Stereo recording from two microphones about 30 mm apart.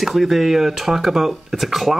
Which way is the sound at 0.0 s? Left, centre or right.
Centre.